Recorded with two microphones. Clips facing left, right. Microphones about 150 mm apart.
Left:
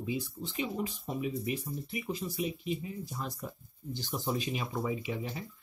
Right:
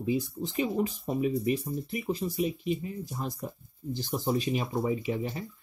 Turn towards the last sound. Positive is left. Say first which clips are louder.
# right 5 dB
turn(degrees=-35)  # may be behind; listen again after turning